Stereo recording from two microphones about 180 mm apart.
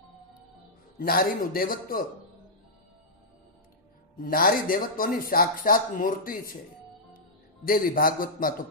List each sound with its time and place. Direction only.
0.9 s speech: 55° left (ahead or behind)
4.2 s a man's voice: 55° left (ahead or behind)